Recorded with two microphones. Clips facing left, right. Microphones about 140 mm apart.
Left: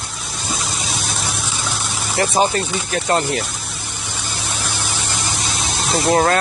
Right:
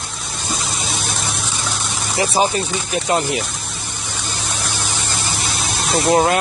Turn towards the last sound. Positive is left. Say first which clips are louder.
# right 1 dB
turn(degrees=-15)  # may be behind; listen again after turning